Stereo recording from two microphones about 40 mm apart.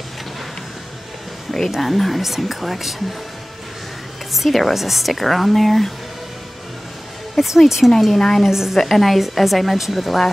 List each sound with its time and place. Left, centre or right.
1.8 s speech: centre
4.3 s speech: centre
7.3 s speech: centre
8.2 s a woman's voice: centre
8.5 s a woman's voice: centre
8.7 s speech: centre